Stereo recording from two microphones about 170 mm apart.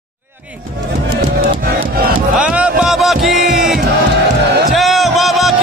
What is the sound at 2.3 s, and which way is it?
Music, 5° right (ahead or behind).